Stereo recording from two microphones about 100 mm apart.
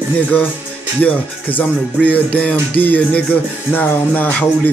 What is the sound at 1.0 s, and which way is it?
Speech, 15° left (ahead or behind).